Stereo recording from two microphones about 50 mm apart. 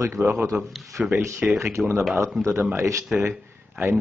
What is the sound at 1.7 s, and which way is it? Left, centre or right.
Speech, right.